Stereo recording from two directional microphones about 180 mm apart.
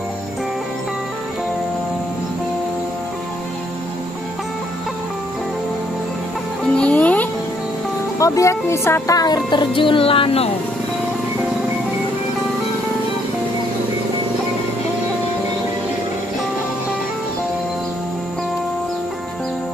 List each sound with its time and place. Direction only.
6.6 s music: 5° left (ahead or behind)
8.2 s speech: 15° left (ahead or behind); by 10.5 s 30° left (ahead or behind)